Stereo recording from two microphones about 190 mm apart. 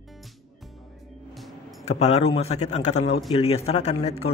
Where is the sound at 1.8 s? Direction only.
35° left (ahead or behind).